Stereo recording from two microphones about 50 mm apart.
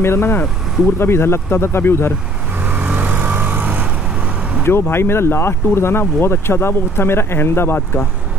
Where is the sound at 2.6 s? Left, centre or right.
Right.